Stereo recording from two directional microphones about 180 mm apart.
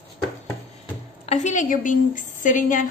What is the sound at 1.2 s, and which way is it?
A woman's voice, 40° left (ahead or behind).